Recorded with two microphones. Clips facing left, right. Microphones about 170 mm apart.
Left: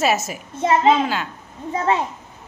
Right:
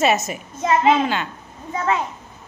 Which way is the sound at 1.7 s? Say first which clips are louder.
Left 2 dB; 30° left (ahead or behind).